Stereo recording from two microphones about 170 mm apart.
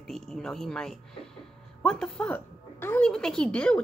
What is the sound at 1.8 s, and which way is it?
A woman's voice, 5° left (ahead or behind).